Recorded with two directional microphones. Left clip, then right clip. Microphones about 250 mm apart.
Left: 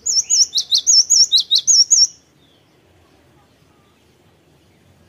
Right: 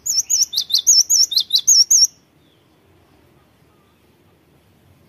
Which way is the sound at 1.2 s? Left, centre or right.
Centre.